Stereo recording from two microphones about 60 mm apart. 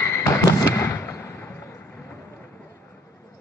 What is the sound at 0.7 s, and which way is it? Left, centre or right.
Fireworks, left.